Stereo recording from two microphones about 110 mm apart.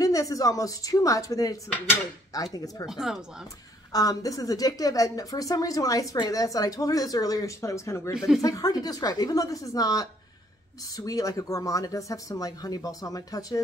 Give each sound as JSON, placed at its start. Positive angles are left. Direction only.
{"t": 0.0, "sound": "a woman's voice", "side_deg": 30}
{"t": 2.9, "sound": "speech", "side_deg": -5}
{"t": 3.9, "sound": "a woman's voice", "side_deg": 35}